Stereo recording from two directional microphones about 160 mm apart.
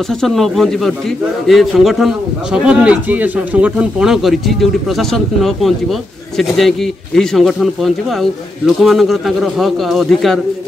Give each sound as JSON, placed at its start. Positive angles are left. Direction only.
{"t": 0.2, "sound": "speech", "side_deg": 0}